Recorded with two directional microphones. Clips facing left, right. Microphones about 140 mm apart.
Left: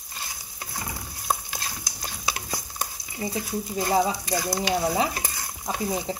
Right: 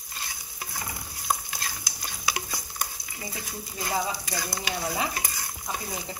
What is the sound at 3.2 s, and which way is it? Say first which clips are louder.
Stir: left 9 dB; 30° left (ahead or behind).